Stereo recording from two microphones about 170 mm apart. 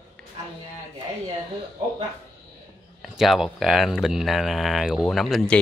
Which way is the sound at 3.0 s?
Centre (ahead or behind).